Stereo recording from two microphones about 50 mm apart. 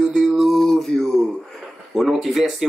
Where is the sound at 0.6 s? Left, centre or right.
Centre.